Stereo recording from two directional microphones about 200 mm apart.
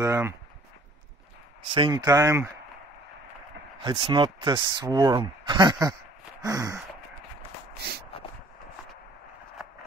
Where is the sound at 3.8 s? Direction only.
25° right (ahead or behind).